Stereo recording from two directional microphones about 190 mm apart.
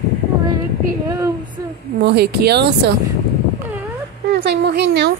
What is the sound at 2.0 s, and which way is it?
Speech, 60° right (ahead or behind).